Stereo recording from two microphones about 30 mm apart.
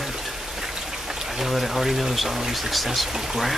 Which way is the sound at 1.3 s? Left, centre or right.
Centre.